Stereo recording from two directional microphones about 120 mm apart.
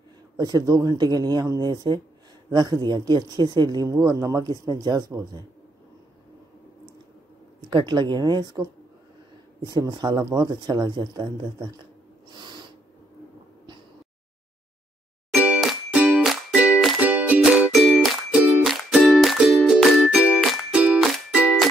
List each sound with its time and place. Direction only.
0.4 s speech: 30° right (ahead or behind)
7.7 s speech: 40° right (ahead or behind)
12.3 s owl: 40° right (ahead or behind)
15.3 s music: 10° right (ahead or behind)
20.1 s music: 10° right (ahead or behind)